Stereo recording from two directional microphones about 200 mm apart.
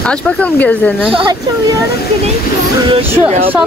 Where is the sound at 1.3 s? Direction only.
20° right (ahead or behind).